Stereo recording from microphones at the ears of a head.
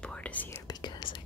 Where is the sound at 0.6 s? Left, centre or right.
Left.